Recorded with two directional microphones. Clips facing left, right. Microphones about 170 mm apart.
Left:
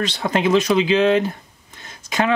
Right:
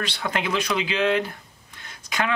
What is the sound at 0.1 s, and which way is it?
Speech, 30° left (ahead or behind).